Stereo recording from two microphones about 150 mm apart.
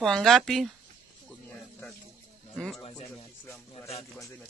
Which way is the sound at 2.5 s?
5° left (ahead or behind).